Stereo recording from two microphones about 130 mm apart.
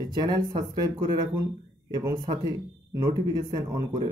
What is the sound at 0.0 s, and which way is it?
Speech, 30° right (ahead or behind).